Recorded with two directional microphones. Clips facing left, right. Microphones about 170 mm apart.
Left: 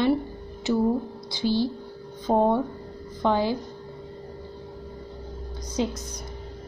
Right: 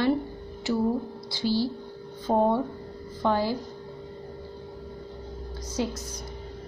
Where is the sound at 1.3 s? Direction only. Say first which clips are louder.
Left 2 dB; 20° left (ahead or behind).